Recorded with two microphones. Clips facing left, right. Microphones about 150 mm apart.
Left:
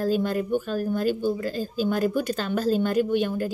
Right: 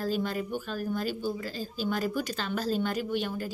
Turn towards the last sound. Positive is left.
turn(degrees=50)  # may be behind; listen again after turning